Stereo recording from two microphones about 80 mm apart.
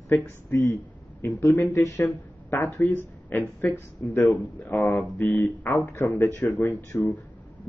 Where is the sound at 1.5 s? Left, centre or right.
Left.